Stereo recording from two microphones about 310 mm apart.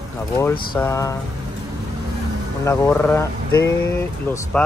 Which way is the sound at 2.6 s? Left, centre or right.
Centre.